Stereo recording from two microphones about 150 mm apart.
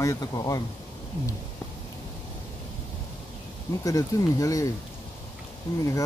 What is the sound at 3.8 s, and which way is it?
Speech, 25° left (ahead or behind).